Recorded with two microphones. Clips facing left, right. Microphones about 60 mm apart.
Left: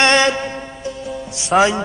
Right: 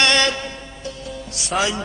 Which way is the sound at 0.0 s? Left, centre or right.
Left.